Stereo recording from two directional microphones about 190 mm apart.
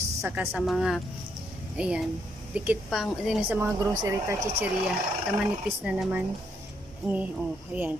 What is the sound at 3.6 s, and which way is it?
Speech, 20° right (ahead or behind).